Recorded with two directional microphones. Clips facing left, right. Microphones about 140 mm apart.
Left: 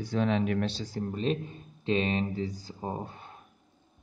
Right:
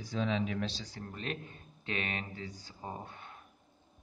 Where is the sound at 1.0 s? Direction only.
25° left (ahead or behind).